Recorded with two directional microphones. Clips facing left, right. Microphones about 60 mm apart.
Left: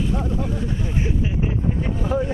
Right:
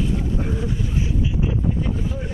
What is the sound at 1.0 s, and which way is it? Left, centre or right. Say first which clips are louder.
Speech: even; left.